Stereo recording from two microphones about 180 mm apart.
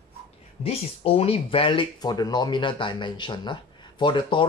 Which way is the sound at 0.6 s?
35° left (ahead or behind).